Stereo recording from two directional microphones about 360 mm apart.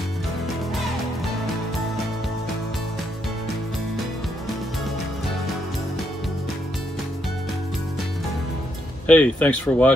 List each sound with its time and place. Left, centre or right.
9.0 s speech: centre